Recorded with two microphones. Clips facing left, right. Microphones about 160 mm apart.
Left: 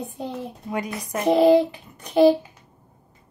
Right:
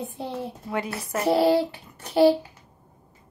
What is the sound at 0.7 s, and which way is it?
Speech, 15° left (ahead or behind).